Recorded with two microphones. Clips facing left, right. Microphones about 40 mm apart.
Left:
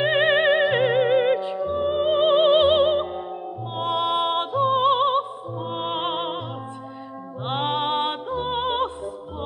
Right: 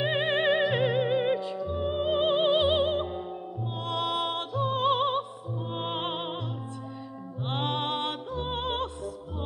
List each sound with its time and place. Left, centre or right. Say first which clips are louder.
0.0 s music: left 7 dB; left
7.4 s music: left 6 dB; left